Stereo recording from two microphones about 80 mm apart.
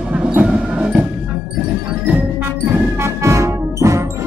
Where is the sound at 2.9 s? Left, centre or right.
Right.